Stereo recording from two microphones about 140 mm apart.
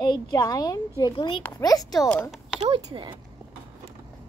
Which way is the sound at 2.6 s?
40° right (ahead or behind).